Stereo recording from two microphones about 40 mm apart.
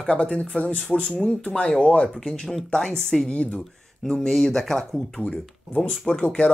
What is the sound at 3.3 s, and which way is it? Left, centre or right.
Speech, left.